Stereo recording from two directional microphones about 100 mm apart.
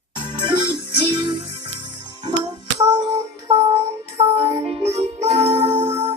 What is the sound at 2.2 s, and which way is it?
Music, 45° right (ahead or behind).